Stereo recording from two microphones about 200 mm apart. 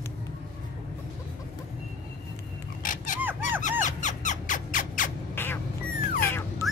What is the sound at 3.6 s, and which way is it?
Squeak, 35° left (ahead or behind).